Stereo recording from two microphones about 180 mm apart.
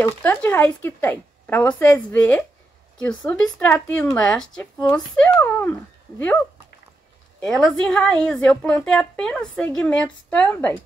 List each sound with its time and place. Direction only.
0.0 s speech: 10° left (ahead or behind)
7.4 s a woman's voice: 5° left (ahead or behind)